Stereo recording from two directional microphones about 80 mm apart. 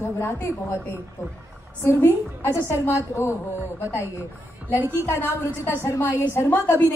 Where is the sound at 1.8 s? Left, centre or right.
Left.